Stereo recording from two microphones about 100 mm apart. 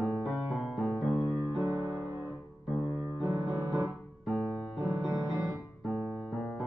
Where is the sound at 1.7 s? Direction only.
25° right (ahead or behind).